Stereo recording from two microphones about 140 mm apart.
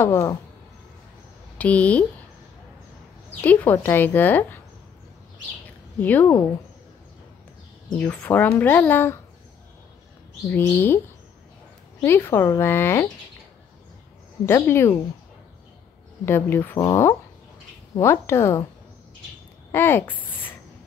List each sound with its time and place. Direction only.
0.0 s a woman's voice: 20° left (ahead or behind)
1.6 s a woman's voice: 10° left (ahead or behind)
3.3 s a woman's voice: 10° left (ahead or behind)
5.9 s a woman's voice: 10° left (ahead or behind)
8.0 s a woman's voice: 10° left (ahead or behind)
10.5 s a woman's voice: 15° left (ahead or behind)
12.0 s a woman's voice: 15° left (ahead or behind)
14.4 s a woman's voice: 20° left (ahead or behind)
16.3 s a woman's voice: 15° left (ahead or behind)
19.7 s speech: 15° left (ahead or behind)